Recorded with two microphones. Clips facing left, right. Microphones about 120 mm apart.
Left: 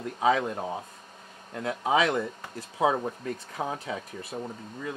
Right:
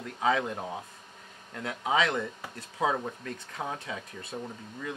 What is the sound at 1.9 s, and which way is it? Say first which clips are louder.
Speech: left 3 dB; 15° left (ahead or behind).